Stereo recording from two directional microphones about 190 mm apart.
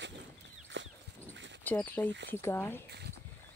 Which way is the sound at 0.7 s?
70° right (ahead or behind).